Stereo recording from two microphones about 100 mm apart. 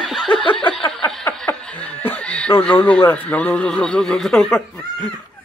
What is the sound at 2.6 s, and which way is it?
Speech, 15° left (ahead or behind).